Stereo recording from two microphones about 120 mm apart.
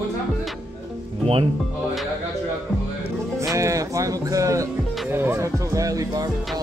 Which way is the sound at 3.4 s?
25° right (ahead or behind).